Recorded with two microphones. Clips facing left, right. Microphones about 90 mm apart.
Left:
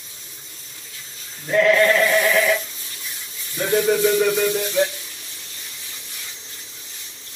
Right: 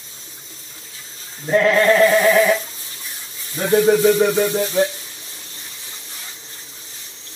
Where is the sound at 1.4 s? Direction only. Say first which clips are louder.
Right 2 dB; 30° right (ahead or behind).